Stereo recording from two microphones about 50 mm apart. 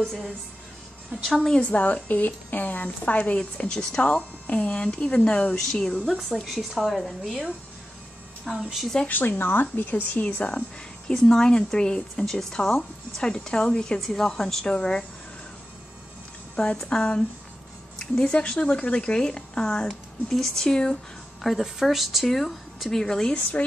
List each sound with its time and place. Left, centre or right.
0.0 s speech: centre
1.6 s a woman's voice: left
6.0 s speech: centre
8.5 s speech: centre
9.0 s a woman's voice: left
11.1 s speech: centre
13.2 s speech: centre
16.7 s speech: centre
18.2 s a woman's voice: centre